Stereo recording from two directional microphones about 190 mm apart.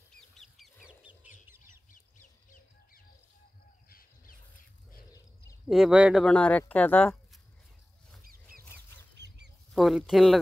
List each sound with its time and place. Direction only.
0.8 s bird: 5° right (ahead or behind)
1.9 s chicken: 45° left (ahead or behind)
5.7 s speech: 5° right (ahead or behind)
6.2 s speech: 5° left (ahead or behind)
8.2 s rodents: 50° right (ahead or behind)
9.1 s chicken: 65° right (ahead or behind)
9.8 s speech: centre (ahead or behind)